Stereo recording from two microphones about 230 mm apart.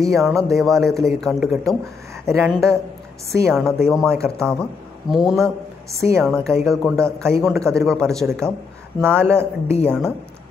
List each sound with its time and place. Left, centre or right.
0.0 s a man's voice: centre
3.3 s a man's voice: centre
7.2 s speech: centre
7.4 s a man's voice: centre
9.0 s speech: centre
9.8 s a man's voice: centre